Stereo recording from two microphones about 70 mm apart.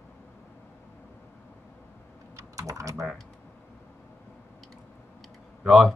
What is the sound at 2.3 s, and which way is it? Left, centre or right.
Typing, right.